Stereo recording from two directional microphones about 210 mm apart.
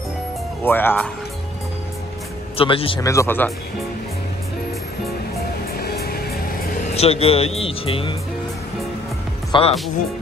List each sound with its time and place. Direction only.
0.7 s speech: 10° left (ahead or behind)
2.5 s speech: 25° left (ahead or behind)
3.1 s speech: 10° left (ahead or behind)
5.8 s music: 45° left (ahead or behind); by 8.2 s 25° left (ahead or behind)
9.5 s speech: 25° left (ahead or behind)